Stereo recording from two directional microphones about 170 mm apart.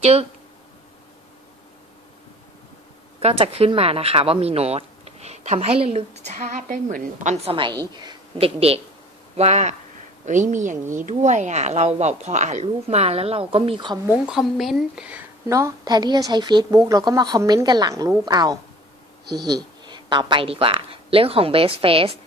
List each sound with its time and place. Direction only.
0.0 s speech: 40° right (ahead or behind)
3.2 s a woman's voice: 35° right (ahead or behind)
7.4 s a woman's voice: 30° right (ahead or behind)
14.2 s a woman's voice: centre (ahead or behind)
15.4 s a woman's voice: 20° right (ahead or behind)